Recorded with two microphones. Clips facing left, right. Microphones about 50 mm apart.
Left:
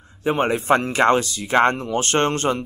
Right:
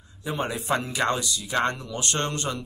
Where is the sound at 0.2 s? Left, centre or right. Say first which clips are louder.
Left 9 dB; left.